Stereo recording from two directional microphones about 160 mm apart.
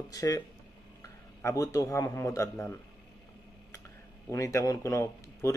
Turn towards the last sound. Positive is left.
turn(degrees=20)  # may be behind; listen again after turning